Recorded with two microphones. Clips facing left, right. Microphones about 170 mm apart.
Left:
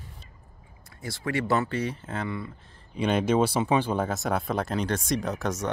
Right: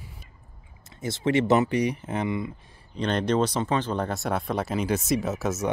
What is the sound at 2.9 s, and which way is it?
Speech, 10° left (ahead or behind).